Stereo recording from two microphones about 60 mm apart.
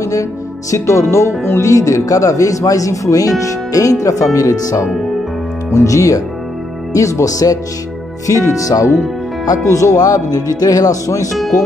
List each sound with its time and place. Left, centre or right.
0.0 s speech: left
8.3 s speech: left